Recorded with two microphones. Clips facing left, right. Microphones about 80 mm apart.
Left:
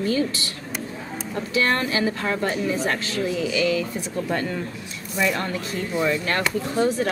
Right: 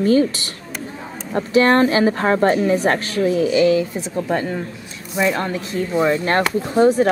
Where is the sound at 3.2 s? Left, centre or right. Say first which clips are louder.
Right 8 dB; right.